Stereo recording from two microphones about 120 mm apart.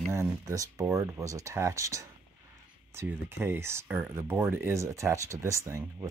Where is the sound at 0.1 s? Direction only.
25° right (ahead or behind).